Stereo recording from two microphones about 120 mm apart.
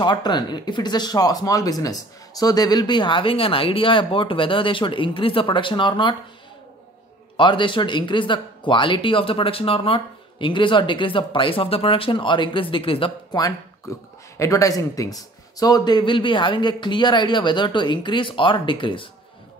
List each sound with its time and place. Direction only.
0.0 s speech: 40° left (ahead or behind)
7.3 s speech: 45° left (ahead or behind)
13.3 s speech: 30° left (ahead or behind)